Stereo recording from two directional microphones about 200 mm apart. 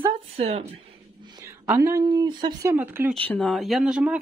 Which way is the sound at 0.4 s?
30° right (ahead or behind).